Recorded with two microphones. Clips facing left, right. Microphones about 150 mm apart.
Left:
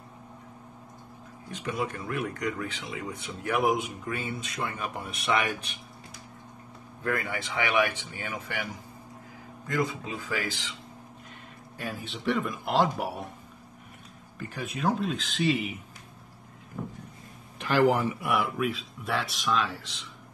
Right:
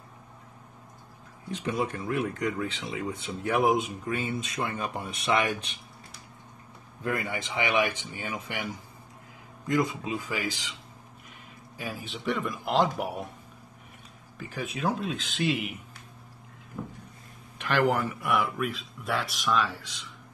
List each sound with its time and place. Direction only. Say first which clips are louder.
1.5 s speech: right 2 dB; 20° right (ahead or behind)
7.0 s speech: even; 20° right (ahead or behind)
9.7 s speech: right 3 dB; 20° right (ahead or behind)
11.8 s speech: left 1 dB; centre (ahead or behind)
14.5 s speech: left 1 dB; centre (ahead or behind)
17.6 s speech: left 2 dB; 5° left (ahead or behind)